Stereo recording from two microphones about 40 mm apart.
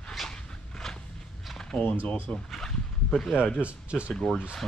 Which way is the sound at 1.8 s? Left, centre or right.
Left.